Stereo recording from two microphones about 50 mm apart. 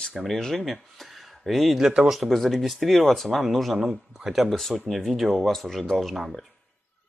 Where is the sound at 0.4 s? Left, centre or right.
Centre.